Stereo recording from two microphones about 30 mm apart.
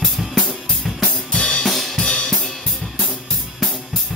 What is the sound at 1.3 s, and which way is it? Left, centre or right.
Drum kit, left.